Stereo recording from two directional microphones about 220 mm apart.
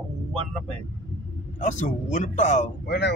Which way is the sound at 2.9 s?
50° left (ahead or behind).